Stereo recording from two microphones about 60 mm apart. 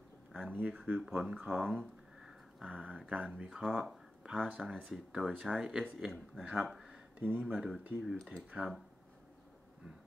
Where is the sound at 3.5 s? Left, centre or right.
Centre.